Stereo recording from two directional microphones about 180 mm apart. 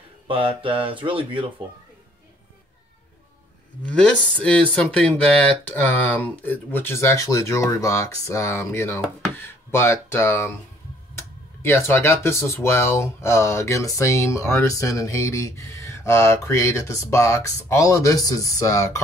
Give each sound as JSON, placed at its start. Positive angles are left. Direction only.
{"t": 0.3, "sound": "speech", "side_deg": -30}
{"t": 3.8, "sound": "speech", "side_deg": 5}